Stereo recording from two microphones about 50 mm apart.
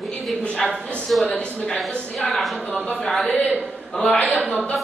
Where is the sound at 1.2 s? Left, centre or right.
Left.